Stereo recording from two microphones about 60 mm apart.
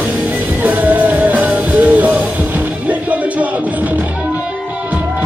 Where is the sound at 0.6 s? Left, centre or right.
Right.